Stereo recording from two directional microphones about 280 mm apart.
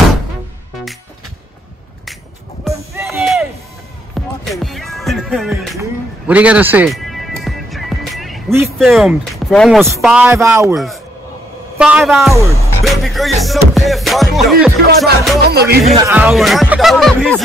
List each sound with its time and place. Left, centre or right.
2.6 s music: centre
9.8 s speech: centre
12.8 s music: centre
15.0 s music: right
16.1 s speech: centre